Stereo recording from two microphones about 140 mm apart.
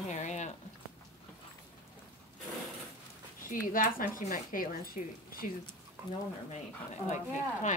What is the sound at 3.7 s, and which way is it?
Speech, 80° left.